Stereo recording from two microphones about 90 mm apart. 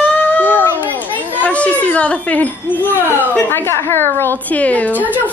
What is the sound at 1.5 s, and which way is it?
Speech, 15° left (ahead or behind).